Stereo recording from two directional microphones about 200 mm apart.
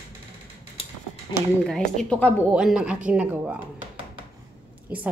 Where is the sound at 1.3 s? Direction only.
25° left (ahead or behind).